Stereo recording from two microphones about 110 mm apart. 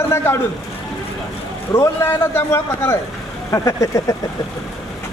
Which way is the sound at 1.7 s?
20° left (ahead or behind).